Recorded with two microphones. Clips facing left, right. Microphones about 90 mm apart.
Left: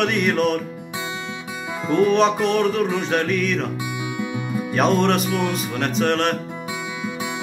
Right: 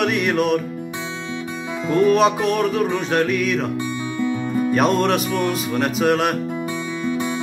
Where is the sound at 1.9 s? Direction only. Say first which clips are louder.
Right 1 dB; centre (ahead or behind).